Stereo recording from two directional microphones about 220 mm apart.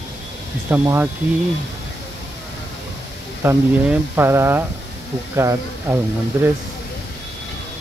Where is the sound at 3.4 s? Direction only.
10° right (ahead or behind).